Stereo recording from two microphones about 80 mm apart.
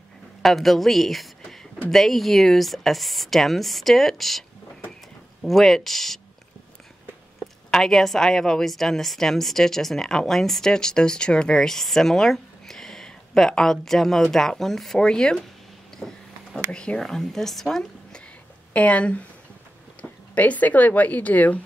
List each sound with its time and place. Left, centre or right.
0.4 s a woman's voice: centre
7.7 s a woman's voice: centre
18.7 s speech: centre